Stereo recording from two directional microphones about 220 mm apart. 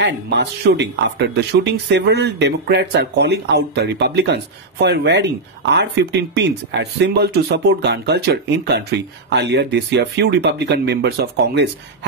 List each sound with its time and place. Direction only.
0.0 s speech: 50° right (ahead or behind)